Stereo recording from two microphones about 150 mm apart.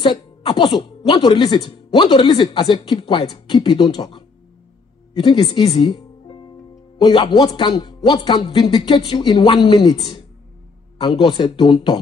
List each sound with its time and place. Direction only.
0.0 s speech: 30° left (ahead or behind)
5.8 s music: 35° left (ahead or behind)
7.0 s speech: 30° left (ahead or behind)
11.0 s speech: 35° left (ahead or behind)